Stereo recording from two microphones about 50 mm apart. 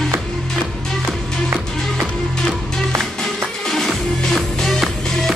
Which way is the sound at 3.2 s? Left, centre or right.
Centre.